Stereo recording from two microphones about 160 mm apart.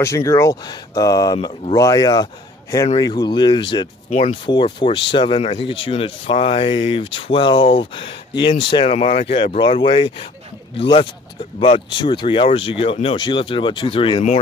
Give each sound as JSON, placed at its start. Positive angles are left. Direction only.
{"t": 0.0, "sound": "speech", "side_deg": 20}
{"t": 8.8, "sound": "speech", "side_deg": 45}